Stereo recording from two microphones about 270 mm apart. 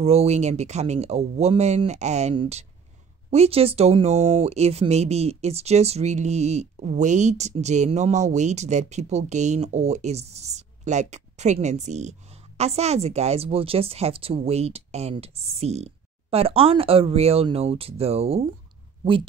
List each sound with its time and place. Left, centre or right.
0.0 s speech: right